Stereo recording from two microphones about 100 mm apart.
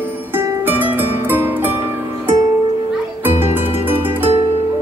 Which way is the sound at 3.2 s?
20° right (ahead or behind).